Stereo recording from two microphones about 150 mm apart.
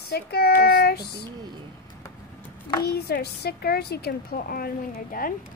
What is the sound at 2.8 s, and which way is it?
A woman's voice, 90° left.